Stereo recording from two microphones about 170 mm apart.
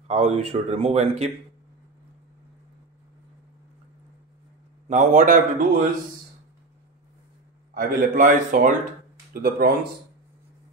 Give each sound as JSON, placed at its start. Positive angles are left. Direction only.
{"t": 0.1, "sound": "speech", "side_deg": -35}
{"t": 4.8, "sound": "a man's voice", "side_deg": -45}
{"t": 7.7, "sound": "a man's voice", "side_deg": -55}